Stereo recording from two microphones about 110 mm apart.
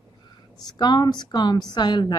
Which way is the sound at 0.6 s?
40° left (ahead or behind).